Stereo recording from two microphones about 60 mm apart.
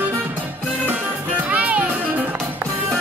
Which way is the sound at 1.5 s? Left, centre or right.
Right.